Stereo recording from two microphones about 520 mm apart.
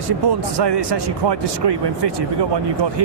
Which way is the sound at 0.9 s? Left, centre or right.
Right.